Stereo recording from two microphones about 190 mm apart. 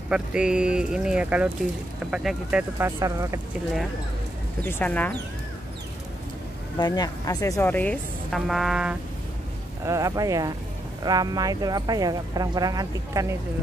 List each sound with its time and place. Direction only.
0.1 s speech: 5° right (ahead or behind)
3.0 s speech: 15° right (ahead or behind)
4.6 s speech: 10° left (ahead or behind)
6.8 s speech: 20° left (ahead or behind); by 8.9 s 5° right (ahead or behind)
9.8 s speech: 15° right (ahead or behind)